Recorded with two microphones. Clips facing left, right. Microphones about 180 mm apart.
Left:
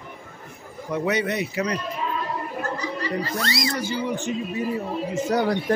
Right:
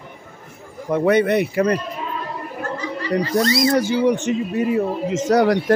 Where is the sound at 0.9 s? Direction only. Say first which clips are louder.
Right 8 dB; 55° right (ahead or behind).